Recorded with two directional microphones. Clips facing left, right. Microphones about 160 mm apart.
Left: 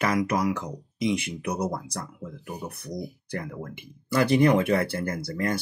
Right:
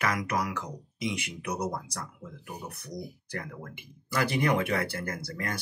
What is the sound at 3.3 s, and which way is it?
Speech, 25° left (ahead or behind).